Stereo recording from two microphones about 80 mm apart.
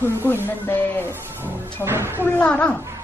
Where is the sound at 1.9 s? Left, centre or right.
Right.